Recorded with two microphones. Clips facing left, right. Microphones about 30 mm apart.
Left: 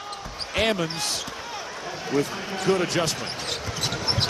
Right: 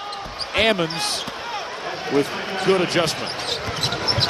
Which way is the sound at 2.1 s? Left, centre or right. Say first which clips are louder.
Right 4 dB; right.